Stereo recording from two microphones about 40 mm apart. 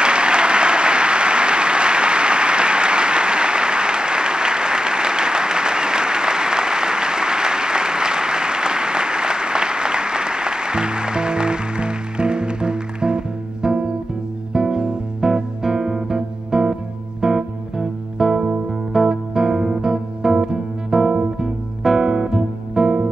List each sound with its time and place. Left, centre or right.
0.0 s applause: right
14.5 s music: centre